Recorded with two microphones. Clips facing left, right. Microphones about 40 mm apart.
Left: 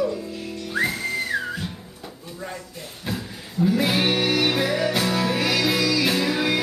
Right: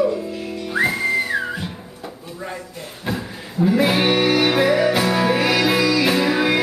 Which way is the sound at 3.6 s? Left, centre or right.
Centre.